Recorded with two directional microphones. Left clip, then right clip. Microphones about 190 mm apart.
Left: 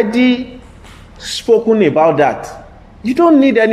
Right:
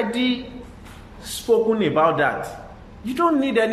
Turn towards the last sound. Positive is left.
turn(degrees=35)  # may be behind; listen again after turning